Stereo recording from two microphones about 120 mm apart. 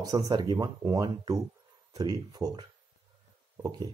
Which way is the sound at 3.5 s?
30° right (ahead or behind).